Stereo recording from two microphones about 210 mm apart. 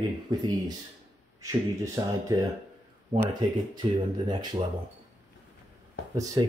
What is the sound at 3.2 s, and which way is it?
Speech, 20° right (ahead or behind).